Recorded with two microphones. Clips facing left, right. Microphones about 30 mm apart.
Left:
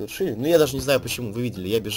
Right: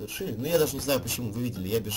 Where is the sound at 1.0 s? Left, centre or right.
Left.